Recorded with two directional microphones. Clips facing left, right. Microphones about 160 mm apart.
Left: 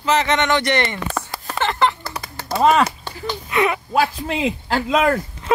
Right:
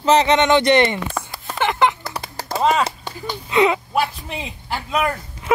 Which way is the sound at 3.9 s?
90° left.